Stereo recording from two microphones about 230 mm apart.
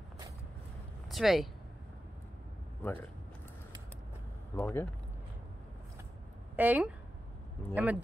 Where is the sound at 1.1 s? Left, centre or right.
Centre.